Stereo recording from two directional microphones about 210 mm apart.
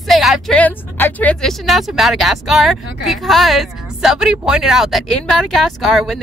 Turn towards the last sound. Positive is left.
turn(degrees=0)  # may be behind; listen again after turning